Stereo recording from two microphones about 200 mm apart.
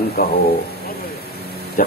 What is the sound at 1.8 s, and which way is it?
Speech, 45° left (ahead or behind).